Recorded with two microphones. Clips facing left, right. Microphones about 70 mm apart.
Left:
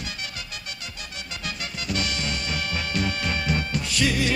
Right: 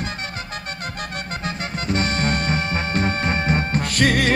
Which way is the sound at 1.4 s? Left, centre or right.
Right.